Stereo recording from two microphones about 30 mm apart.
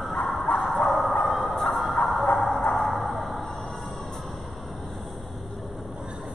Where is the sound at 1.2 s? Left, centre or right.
Centre.